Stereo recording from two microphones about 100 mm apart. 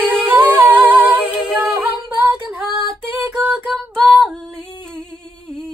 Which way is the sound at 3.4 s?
20° right (ahead or behind).